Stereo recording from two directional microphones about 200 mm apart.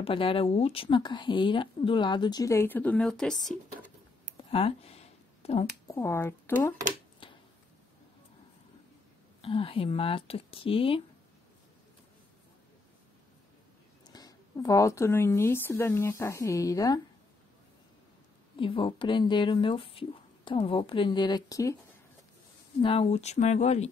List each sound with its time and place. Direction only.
0.0 s speech: 25° left (ahead or behind); by 3.5 s centre (ahead or behind)
4.5 s a sound: 30° left (ahead or behind)
5.9 s speech: 15° left (ahead or behind)
7.2 s a sound: 25° left (ahead or behind)
9.4 s speech: 25° left (ahead or behind)
14.0 s a woman's voice: 20° left (ahead or behind)
18.6 s speech: 25° left (ahead or behind)
22.8 s speech: 25° left (ahead or behind)